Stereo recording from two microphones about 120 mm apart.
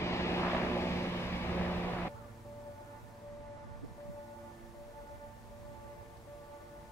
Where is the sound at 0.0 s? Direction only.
20° left (ahead or behind).